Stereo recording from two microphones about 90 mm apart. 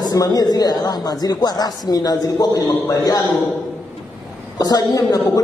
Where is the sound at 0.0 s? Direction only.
45° left (ahead or behind).